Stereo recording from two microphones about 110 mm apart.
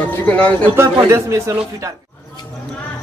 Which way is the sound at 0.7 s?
25° right (ahead or behind).